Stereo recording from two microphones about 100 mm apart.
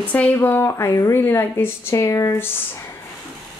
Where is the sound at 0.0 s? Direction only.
15° left (ahead or behind); by 1.2 s 30° left (ahead or behind).